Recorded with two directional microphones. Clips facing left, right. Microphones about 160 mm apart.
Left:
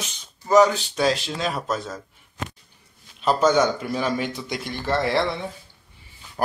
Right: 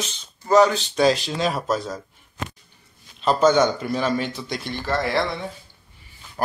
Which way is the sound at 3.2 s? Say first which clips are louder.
Right 2 dB; 10° left (ahead or behind).